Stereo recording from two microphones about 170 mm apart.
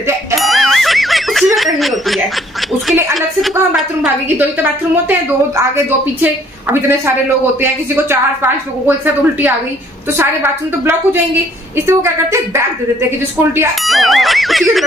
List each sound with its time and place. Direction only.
0.4 s snicker: centre (ahead or behind)
2.9 s speech: centre (ahead or behind)
6.2 s speech: 15° right (ahead or behind)
13.8 s a sound: centre (ahead or behind)